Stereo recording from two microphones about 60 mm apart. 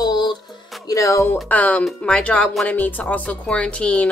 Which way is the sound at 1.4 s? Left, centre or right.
Left.